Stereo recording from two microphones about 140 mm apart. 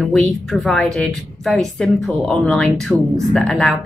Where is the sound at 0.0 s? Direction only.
5° left (ahead or behind).